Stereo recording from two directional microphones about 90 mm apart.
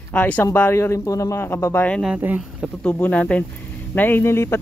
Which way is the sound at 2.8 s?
20° left (ahead or behind).